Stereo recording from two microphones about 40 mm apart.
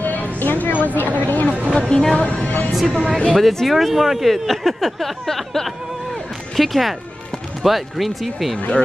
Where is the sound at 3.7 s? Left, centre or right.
Centre.